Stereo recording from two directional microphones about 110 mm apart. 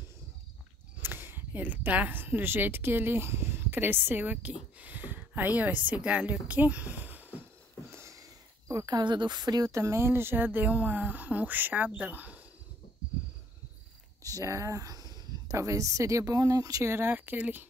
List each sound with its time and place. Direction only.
1.0 s speech: 20° right (ahead or behind)
7.9 s sniff: 25° right (ahead or behind)
8.8 s speech: 45° right (ahead or behind); by 12.4 s 15° right (ahead or behind)
14.2 s speech: 30° right (ahead or behind)